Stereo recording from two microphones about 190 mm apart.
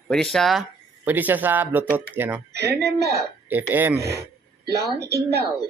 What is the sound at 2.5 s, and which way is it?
Speech, 60° right (ahead or behind).